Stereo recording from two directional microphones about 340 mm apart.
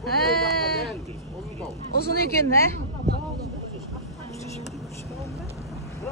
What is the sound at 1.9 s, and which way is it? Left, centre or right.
Speech, left.